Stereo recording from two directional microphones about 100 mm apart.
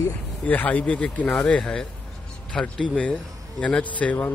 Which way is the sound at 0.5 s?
15° left (ahead or behind).